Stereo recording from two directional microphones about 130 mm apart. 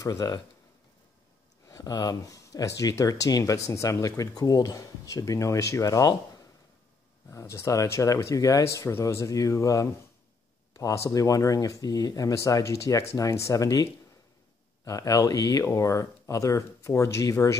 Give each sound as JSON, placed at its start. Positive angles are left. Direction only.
{"t": 0.0, "sound": "speech", "side_deg": 25}
{"t": 1.7, "sound": "speech", "side_deg": 30}
{"t": 14.9, "sound": "speech", "side_deg": 25}